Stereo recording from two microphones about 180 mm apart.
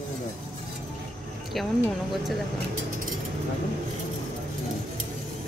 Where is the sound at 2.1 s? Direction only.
Centre (ahead or behind).